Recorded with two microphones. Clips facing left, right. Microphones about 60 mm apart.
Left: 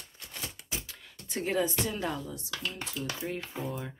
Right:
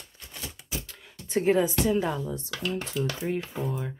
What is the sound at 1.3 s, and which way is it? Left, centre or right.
Speech, right.